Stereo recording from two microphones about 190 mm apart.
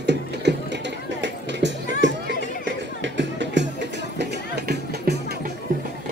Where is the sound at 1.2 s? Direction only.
65° right (ahead or behind).